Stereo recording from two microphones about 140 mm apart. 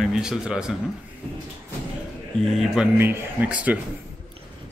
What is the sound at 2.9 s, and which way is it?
Speech, 15° right (ahead or behind).